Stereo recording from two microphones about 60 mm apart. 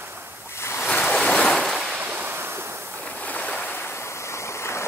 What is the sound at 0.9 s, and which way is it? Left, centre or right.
Waves, left.